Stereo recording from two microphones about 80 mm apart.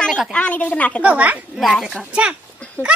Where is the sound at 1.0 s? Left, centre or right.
Centre.